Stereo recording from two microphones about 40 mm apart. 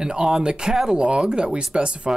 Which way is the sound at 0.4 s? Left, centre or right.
Centre.